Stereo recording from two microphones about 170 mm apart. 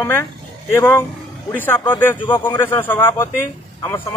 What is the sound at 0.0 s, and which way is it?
A man's voice, 15° left (ahead or behind).